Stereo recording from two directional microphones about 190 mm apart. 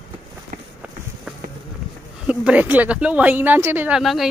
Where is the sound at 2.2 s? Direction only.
5° right (ahead or behind).